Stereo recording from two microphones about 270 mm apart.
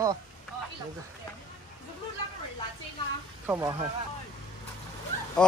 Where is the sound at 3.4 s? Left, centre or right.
Centre.